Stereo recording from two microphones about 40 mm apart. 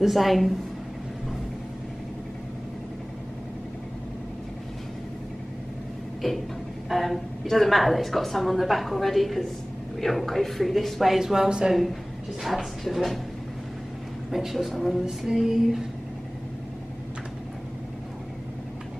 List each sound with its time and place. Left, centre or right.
0.0 s a woman's voice: centre
6.2 s a woman's voice: centre
11.1 s female singing: centre
11.7 s a woman's voice: centre
14.3 s a woman's voice: centre
15.0 s female singing: centre